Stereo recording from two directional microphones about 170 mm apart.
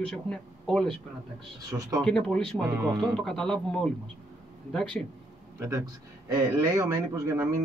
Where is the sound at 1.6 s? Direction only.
20° right (ahead or behind).